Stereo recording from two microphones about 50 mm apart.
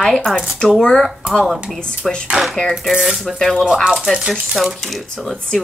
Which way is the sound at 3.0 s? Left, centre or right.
Centre.